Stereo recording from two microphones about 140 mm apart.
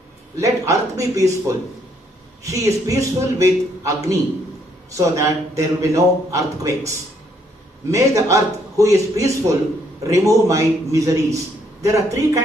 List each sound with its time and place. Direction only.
0.4 s a man's voice: 25° right (ahead or behind)
2.4 s a man's voice: 25° right (ahead or behind)
7.9 s a man's voice: 20° right (ahead or behind)